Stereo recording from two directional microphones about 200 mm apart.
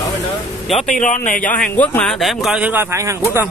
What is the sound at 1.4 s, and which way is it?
A man's voice, 5° left (ahead or behind).